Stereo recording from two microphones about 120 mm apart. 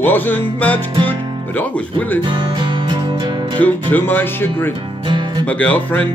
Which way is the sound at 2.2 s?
40° right (ahead or behind).